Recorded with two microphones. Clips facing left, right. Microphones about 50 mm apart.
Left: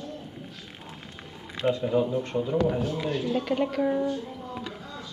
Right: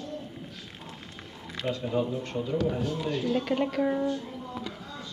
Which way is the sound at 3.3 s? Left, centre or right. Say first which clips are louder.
Left 1 dB; centre.